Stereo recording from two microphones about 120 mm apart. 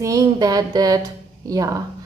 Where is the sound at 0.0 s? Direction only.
30° right (ahead or behind).